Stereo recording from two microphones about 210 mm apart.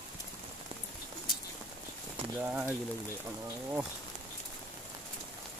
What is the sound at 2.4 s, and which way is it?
Speech, 5° right (ahead or behind).